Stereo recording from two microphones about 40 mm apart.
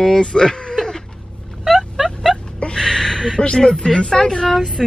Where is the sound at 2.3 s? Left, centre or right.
Centre.